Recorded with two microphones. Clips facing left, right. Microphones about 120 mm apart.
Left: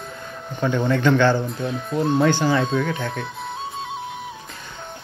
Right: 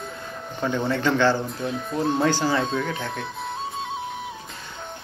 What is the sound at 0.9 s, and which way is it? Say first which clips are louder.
Speech: left 4 dB; 30° right (ahead or behind).